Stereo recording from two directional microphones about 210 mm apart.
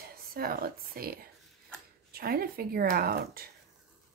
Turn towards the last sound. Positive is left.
turn(degrees=-45)  # may be behind; listen again after turning